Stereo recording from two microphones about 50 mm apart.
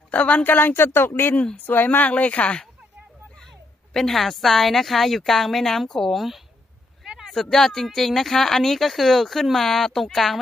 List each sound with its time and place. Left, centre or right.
0.1 s speech: left
3.9 s speech: centre
7.4 s speech: centre